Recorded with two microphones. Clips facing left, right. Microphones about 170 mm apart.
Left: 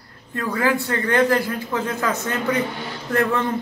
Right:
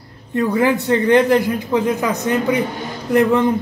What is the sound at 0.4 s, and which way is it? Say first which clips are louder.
A man's voice: right 5 dB; 20° right (ahead or behind).